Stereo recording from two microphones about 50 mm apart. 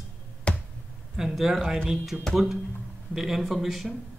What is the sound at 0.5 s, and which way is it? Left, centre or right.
Finger snapping, left.